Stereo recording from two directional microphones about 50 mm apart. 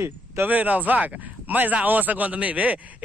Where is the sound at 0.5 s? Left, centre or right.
Right.